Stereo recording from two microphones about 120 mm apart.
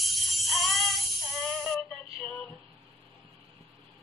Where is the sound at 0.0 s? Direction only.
Centre (ahead or behind).